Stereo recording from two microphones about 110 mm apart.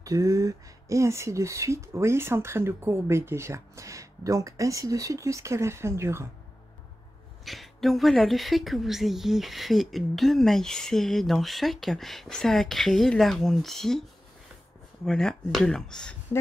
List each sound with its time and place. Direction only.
0.0 s speech: 30° right (ahead or behind)
7.4 s a woman's voice: centre (ahead or behind)
15.0 s a woman's voice: 5° left (ahead or behind)